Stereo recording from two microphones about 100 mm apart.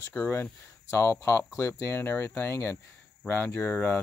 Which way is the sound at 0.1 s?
20° left (ahead or behind).